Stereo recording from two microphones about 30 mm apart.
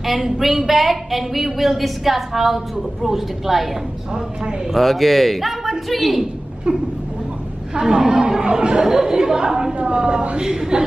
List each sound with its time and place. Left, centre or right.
0.4 s a woman's voice: centre
4.1 s speech: right
4.7 s speech: centre
7.7 s speech: right
8.8 s speech: centre
9.8 s speech: right
10.3 s speech: right